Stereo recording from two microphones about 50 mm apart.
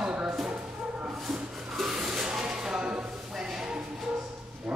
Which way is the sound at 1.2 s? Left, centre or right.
Centre.